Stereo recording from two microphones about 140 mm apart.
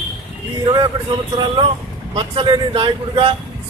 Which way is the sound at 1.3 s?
35° right (ahead or behind).